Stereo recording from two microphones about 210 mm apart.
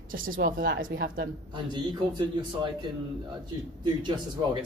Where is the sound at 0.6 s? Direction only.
45° right (ahead or behind).